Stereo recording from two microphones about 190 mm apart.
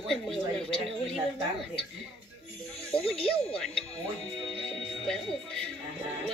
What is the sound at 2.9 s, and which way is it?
Speech, centre (ahead or behind).